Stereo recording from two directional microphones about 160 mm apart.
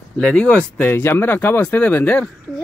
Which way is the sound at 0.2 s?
5° left (ahead or behind).